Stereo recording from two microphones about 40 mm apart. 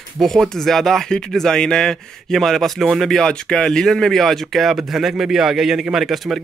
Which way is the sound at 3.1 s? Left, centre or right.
Centre.